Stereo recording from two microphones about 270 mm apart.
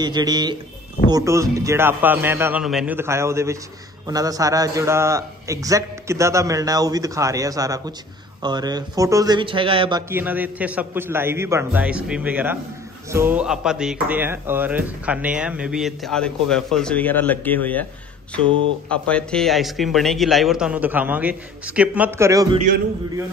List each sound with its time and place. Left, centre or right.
0.0 s speech: centre
18.9 s speech: centre